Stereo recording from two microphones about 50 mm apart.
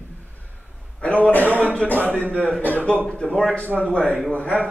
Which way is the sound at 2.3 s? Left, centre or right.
Centre.